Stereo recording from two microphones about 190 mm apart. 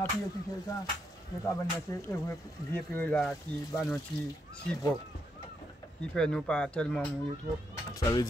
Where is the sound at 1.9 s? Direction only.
15° left (ahead or behind).